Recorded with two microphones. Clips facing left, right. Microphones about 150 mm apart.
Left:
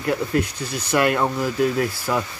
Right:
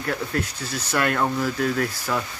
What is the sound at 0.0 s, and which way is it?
Speech, 15° left (ahead or behind).